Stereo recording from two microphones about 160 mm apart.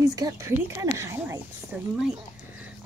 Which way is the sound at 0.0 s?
25° right (ahead or behind).